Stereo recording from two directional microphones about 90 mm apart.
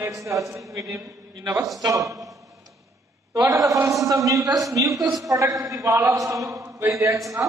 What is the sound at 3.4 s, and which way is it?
A man's voice, 40° right (ahead or behind).